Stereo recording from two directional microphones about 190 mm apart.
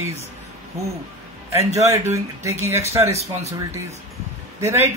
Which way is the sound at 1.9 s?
15° right (ahead or behind).